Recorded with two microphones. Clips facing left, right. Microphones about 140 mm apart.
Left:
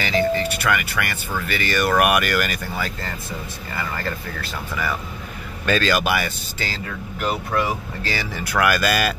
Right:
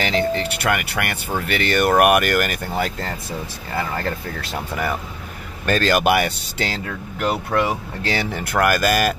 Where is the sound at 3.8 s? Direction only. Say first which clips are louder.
Right 3 dB; 70° right (ahead or behind).